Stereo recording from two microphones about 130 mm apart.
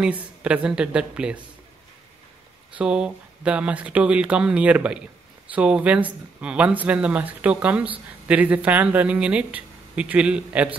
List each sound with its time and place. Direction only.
0.0 s speech: 10° right (ahead or behind)
2.7 s speech: 5° right (ahead or behind)